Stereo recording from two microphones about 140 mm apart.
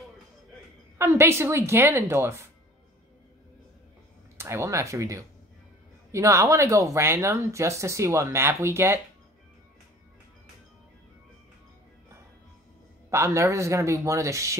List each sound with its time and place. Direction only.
0.9 s a woman's voice: 20° right (ahead or behind)
4.4 s speech: 20° right (ahead or behind)
13.1 s speech: 20° right (ahead or behind)